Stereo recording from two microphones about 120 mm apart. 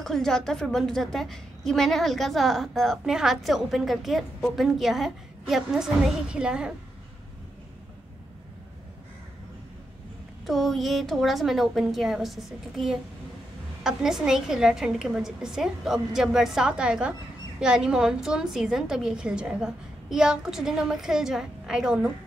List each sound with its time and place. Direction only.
0.0 s a woman's voice: 5° left (ahead or behind)
10.4 s a woman's voice: centre (ahead or behind)